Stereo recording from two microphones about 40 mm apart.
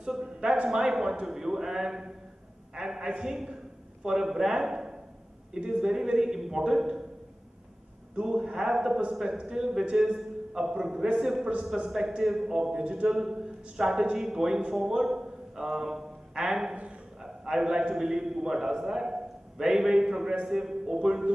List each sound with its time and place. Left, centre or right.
0.2 s a man's voice: right
8.2 s a man's voice: centre
12.8 s a man's voice: right
13.1 s a man's voice: centre